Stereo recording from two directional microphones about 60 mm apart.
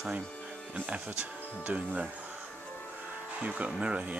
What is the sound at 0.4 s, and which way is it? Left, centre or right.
Speech, centre.